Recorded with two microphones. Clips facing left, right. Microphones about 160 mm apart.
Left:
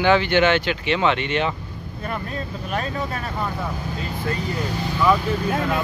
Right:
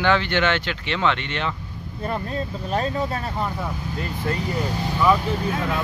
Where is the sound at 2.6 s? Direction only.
30° right (ahead or behind).